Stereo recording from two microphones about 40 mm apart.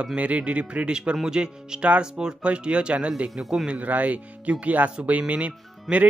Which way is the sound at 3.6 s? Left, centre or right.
Right.